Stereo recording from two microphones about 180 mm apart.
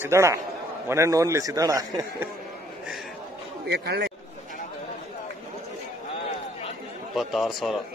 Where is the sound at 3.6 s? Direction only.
65° right (ahead or behind).